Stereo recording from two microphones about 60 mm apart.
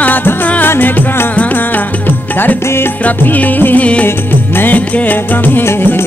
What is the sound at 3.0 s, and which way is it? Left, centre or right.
Music, left.